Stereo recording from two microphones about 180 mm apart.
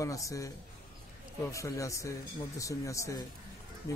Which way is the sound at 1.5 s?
15° left (ahead or behind).